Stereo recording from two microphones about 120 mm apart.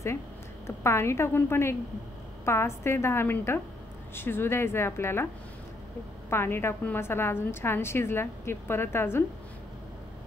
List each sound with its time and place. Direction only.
0.7 s a woman's voice: 20° left (ahead or behind)
6.3 s a woman's voice: 20° left (ahead or behind)